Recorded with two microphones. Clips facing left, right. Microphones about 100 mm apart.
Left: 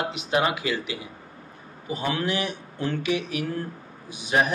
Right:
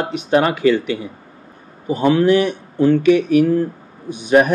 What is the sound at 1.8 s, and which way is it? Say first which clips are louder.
Speech: right 13 dB; 50° right (ahead or behind).